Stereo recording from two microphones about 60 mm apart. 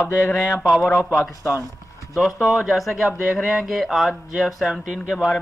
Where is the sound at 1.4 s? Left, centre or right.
Left.